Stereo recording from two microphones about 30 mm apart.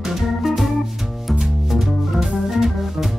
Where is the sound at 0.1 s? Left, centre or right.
Centre.